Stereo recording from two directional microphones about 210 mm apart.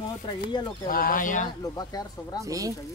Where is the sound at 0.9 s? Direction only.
40° left (ahead or behind).